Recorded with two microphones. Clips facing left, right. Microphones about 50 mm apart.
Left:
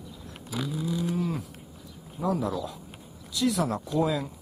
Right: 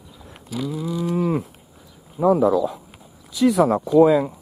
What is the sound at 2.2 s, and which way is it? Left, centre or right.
Speech, right.